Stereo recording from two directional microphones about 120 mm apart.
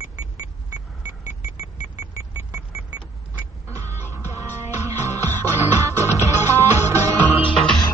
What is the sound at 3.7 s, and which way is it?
Music, 25° right (ahead or behind).